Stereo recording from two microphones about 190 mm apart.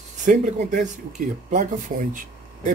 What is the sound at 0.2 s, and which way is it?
Speech, 40° right (ahead or behind).